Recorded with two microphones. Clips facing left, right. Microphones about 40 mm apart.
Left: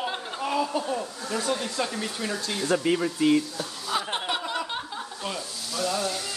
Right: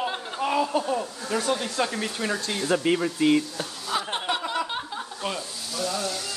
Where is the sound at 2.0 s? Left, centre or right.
Right.